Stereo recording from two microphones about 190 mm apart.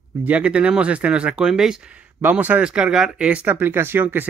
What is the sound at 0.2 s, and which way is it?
Speech, 5° right (ahead or behind).